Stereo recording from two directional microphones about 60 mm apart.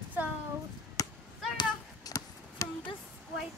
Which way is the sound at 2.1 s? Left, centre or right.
Left.